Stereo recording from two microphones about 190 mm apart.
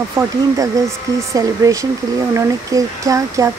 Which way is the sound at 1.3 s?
15° right (ahead or behind).